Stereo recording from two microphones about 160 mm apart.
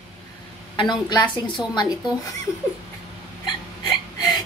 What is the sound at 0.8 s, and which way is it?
A woman's voice, 30° left (ahead or behind).